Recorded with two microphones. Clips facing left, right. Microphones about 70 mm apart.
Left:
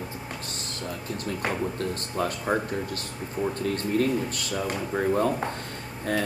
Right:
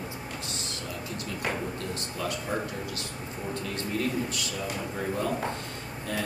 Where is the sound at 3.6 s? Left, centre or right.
Left.